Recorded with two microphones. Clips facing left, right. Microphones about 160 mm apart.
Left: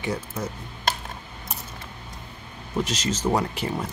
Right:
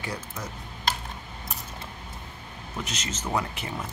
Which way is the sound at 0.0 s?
25° left (ahead or behind).